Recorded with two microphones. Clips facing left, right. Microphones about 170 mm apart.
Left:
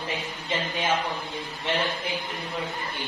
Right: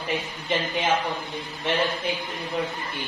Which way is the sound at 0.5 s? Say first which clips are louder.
Right 3 dB; 20° right (ahead or behind).